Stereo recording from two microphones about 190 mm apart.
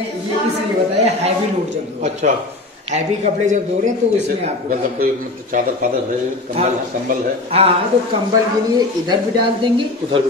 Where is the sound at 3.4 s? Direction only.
40° right (ahead or behind).